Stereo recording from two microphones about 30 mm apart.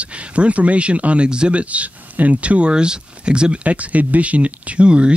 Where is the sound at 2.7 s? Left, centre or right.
Right.